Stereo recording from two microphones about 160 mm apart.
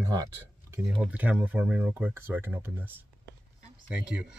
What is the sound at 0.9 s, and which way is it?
Speech, 5° right (ahead or behind).